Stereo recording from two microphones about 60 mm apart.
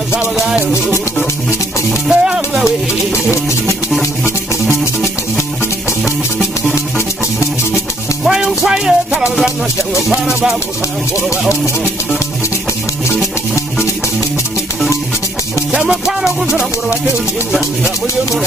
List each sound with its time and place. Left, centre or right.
2.0 s music: centre
8.2 s music: centre
11.2 s music: left
15.9 s music: centre
17.5 s speech: centre